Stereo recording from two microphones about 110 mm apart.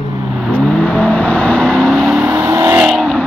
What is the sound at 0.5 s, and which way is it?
Vehicle, 10° left (ahead or behind).